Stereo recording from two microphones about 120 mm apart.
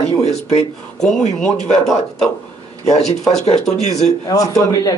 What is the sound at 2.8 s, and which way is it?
Speech, 65° left (ahead or behind).